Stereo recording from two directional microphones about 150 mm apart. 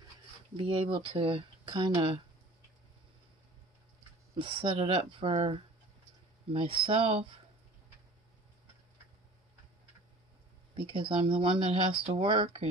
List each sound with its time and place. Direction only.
0.6 s speech: 35° right (ahead or behind)
4.4 s speech: 35° right (ahead or behind)
10.9 s speech: 35° right (ahead or behind)